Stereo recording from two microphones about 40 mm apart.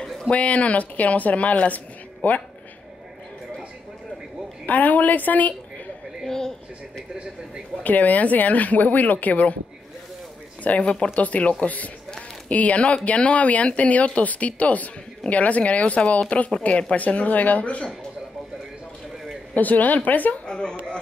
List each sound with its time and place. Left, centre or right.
0.3 s speech: left
4.6 s speech: left
6.2 s speech: centre
7.8 s speech: left
10.6 s speech: left
19.5 s speech: left
20.4 s a woman's voice: centre